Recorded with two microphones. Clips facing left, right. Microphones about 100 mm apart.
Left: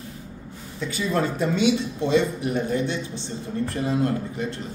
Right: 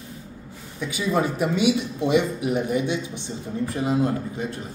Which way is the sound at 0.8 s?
10° right (ahead or behind).